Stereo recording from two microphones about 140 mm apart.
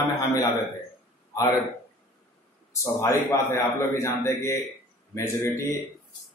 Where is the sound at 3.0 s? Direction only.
20° left (ahead or behind).